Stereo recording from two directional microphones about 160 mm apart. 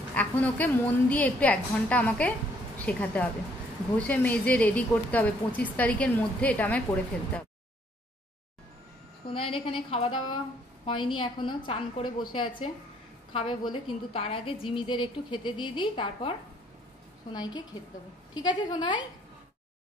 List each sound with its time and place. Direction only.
0.1 s speech: 10° left (ahead or behind)
9.3 s a woman's voice: 35° left (ahead or behind)